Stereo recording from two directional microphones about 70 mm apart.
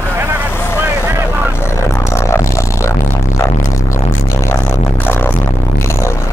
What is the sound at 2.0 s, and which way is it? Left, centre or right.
Music, left.